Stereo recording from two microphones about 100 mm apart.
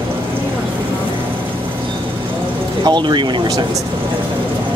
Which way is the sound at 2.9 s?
50° right (ahead or behind).